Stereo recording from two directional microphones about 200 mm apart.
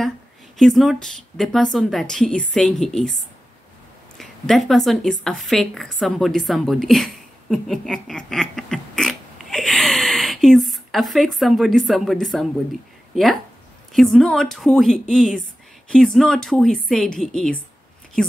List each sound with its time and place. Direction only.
0.6 s speech: centre (ahead or behind)
4.2 s a woman's voice: centre (ahead or behind)